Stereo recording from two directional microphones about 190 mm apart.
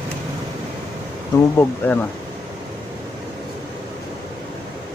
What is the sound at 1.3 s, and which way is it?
Speech, 10° left (ahead or behind).